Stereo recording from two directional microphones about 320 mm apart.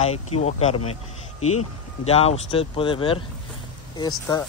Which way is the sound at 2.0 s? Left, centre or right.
Centre.